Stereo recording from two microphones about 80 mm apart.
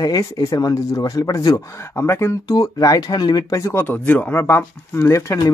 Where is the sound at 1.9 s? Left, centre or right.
Left.